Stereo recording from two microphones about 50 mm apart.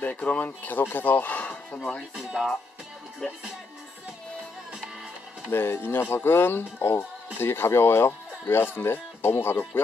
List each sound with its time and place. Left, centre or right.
0.2 s speech: left
0.7 s speech: left
2.1 s speech: centre
5.5 s speech: left